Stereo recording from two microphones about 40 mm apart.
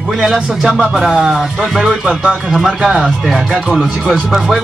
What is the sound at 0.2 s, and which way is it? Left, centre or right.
Speech, centre.